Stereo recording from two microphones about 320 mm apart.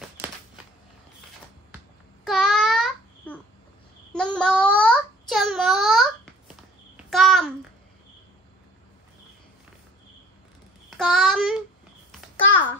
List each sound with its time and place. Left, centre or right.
2.2 s babbling: centre
4.1 s child singing: centre
7.1 s a sound: centre
11.0 s child singing: centre
12.4 s babbling: left